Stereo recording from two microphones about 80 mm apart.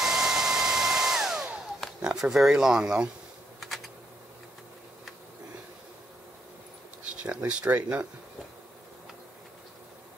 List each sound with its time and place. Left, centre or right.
0.0 s hair dryer: centre
2.0 s speech: centre
3.6 s typing: centre
7.2 s speech: centre